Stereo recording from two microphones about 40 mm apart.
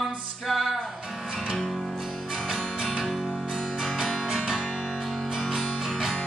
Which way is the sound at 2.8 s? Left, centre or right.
Centre.